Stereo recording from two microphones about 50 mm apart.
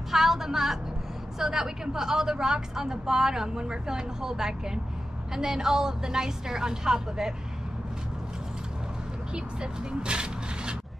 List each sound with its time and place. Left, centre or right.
0.1 s a woman's voice: centre
9.3 s speech: centre